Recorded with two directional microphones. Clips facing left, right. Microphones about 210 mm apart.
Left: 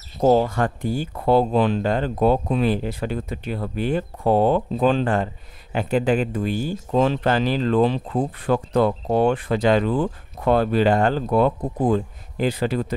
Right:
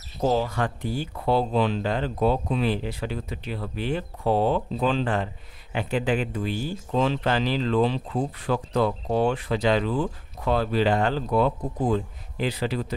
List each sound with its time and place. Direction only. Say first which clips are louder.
0.2 s speech: left 6 dB; 45° left (ahead or behind)